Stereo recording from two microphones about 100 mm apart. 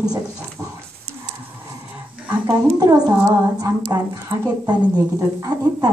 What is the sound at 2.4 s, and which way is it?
Speech, 35° right (ahead or behind).